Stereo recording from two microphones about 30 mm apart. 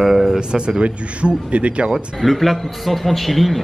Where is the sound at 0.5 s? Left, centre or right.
Right.